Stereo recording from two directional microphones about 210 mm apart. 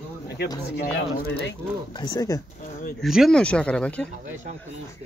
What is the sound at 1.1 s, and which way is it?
Speech, 50° left (ahead or behind).